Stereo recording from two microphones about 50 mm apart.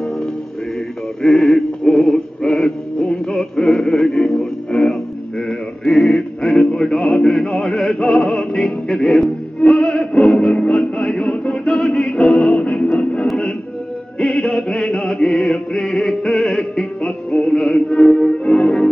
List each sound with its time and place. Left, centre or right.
1.2 s synthetic singing: centre
5.5 s music: centre
11.7 s music: centre
13.3 s music: centre
14.1 s music: centre
14.4 s music: centre